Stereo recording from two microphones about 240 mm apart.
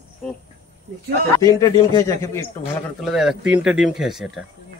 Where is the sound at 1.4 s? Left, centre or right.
Centre.